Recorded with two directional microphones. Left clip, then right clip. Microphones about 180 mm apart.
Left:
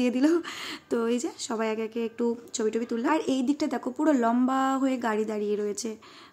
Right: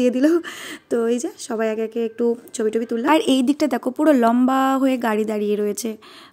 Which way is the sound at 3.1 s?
50° right (ahead or behind).